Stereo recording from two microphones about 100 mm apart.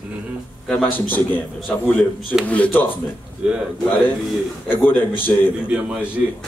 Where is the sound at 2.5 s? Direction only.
15° left (ahead or behind).